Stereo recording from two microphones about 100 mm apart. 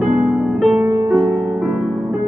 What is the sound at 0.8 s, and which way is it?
Music, 35° right (ahead or behind).